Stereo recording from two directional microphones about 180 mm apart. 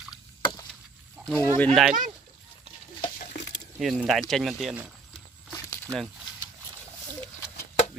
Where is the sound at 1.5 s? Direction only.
5° left (ahead or behind).